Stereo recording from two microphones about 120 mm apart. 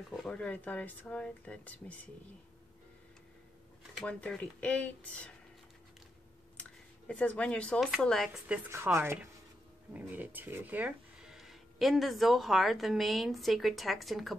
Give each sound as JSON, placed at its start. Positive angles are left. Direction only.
{"t": 0.1, "sound": "speech", "side_deg": 5}
{"t": 3.9, "sound": "speech", "side_deg": 10}
{"t": 7.1, "sound": "a woman's voice", "side_deg": 10}
{"t": 8.6, "sound": "speech", "side_deg": -20}
{"t": 11.3, "sound": "a woman's voice", "side_deg": 0}